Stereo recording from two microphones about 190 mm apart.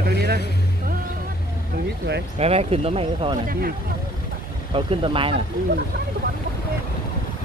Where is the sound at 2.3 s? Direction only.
30° right (ahead or behind).